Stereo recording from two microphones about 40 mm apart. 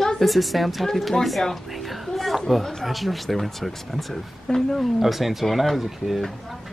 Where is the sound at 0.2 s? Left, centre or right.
Centre.